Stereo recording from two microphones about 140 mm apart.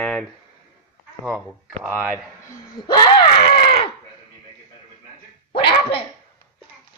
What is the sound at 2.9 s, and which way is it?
Speech, 30° left (ahead or behind).